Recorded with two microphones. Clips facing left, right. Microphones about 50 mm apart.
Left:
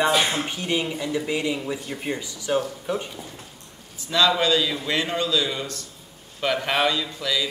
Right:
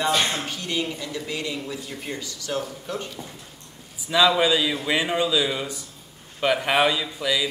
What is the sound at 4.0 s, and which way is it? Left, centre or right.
A man's voice, centre.